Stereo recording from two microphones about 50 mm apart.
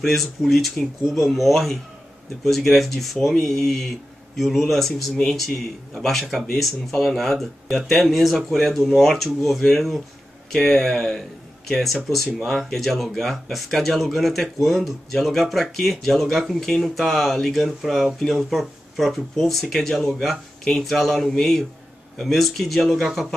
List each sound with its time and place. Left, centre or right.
0.0 s speech: centre